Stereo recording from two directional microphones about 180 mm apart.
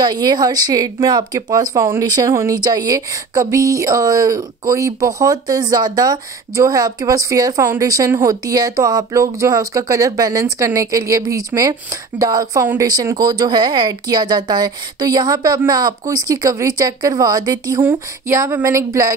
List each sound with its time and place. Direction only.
0.0 s speech: 25° right (ahead or behind)